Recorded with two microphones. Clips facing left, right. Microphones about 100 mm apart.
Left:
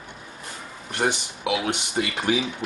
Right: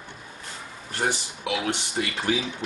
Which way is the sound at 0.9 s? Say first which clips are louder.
Left 3 dB; 15° left (ahead or behind).